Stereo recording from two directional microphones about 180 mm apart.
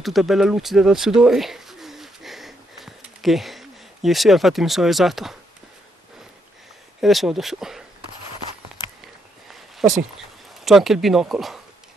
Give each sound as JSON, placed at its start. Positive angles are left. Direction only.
{"t": 0.0, "sound": "a sound", "side_deg": 0}
{"t": 7.0, "sound": "speech", "side_deg": 0}
{"t": 9.8, "sound": "speech", "side_deg": 0}